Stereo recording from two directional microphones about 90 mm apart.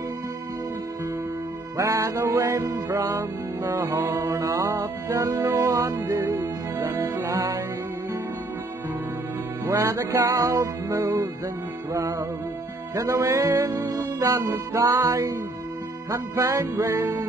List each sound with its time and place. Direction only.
1.8 s music: 35° right (ahead or behind)
9.7 s music: 35° right (ahead or behind)